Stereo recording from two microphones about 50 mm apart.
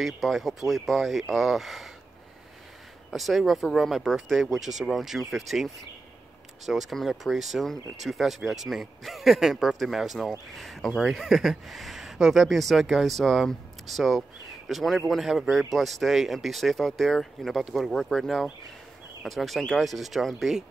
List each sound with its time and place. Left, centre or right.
0.0 s speech: centre
3.1 s speech: centre